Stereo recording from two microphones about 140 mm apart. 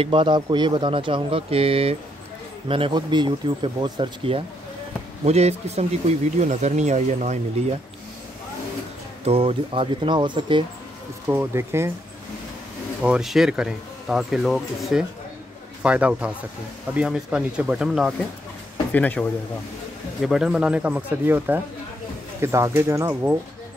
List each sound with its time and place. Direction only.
0.0 s speech: 35° right (ahead or behind)
9.2 s speech: 45° right (ahead or behind)
11.2 s speech: 15° right (ahead or behind)
13.0 s speech: 5° right (ahead or behind)
18.9 s speech: 10° left (ahead or behind)
20.2 s speech: centre (ahead or behind); by 23.3 s 20° right (ahead or behind)